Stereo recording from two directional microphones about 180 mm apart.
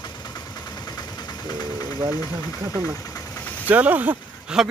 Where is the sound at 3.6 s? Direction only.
10° right (ahead or behind).